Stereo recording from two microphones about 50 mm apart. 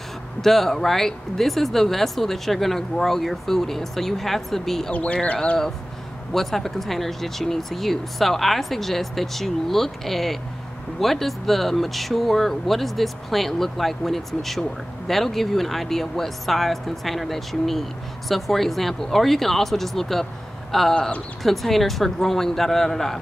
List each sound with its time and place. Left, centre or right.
0.4 s speech: centre
4.9 s speech: left
6.3 s speech: centre